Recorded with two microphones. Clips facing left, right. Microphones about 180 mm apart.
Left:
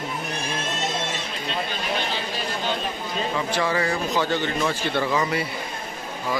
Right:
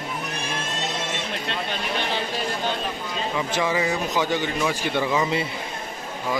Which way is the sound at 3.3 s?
15° right (ahead or behind).